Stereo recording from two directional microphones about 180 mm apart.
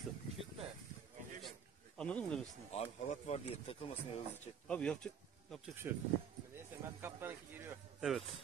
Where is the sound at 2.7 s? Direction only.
35° left (ahead or behind).